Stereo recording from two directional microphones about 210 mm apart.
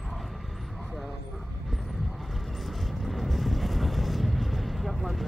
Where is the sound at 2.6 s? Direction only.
Centre (ahead or behind).